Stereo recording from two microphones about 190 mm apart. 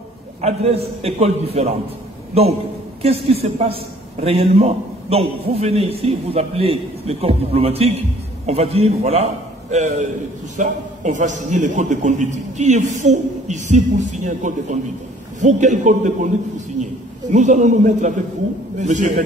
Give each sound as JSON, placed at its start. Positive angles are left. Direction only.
{"t": 0.4, "sound": "a man's voice", "side_deg": -35}
{"t": 3.0, "sound": "a man's voice", "side_deg": -30}